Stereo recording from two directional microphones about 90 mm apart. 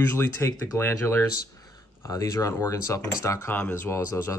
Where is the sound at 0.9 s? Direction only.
35° left (ahead or behind).